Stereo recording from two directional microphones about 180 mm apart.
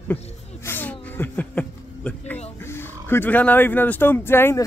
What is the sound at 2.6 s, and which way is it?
Speech, 15° left (ahead or behind).